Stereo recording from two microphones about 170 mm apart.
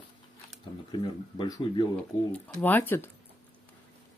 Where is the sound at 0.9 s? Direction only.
25° left (ahead or behind).